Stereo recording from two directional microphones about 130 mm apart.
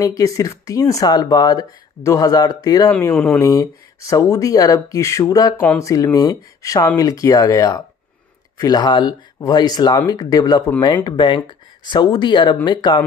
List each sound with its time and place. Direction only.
0.0 s speech: 25° left (ahead or behind)
2.9 s speech: 15° left (ahead or behind)
3.3 s speech: 25° left (ahead or behind)